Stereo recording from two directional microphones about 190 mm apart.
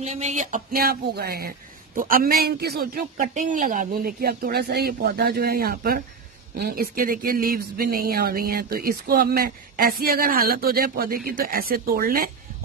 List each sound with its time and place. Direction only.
0.0 s speech: 40° right (ahead or behind)